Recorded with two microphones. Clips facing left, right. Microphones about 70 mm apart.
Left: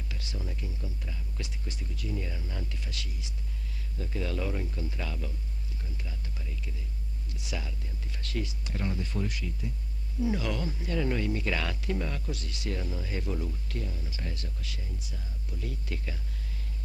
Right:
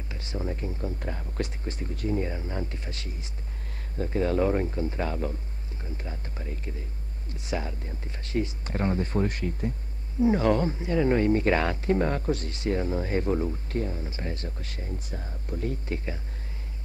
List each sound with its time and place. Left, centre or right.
0.1 s speech: right
1.6 s speech: right
10.8 s speech: right